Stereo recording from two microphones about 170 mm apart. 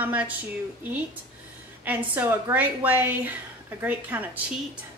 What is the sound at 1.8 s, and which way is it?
A woman's voice, 10° right (ahead or behind).